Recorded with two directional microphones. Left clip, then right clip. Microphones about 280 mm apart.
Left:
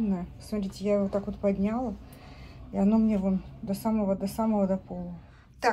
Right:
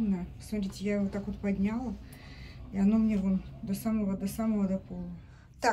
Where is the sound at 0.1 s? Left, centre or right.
Centre.